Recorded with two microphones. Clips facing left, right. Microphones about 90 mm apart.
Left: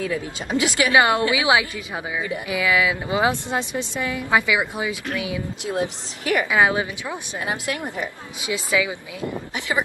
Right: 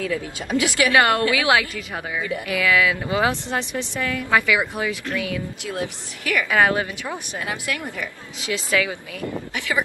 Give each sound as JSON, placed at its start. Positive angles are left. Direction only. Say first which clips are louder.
{"t": 0.0, "sound": "speech", "louder": "even", "side_deg": 25}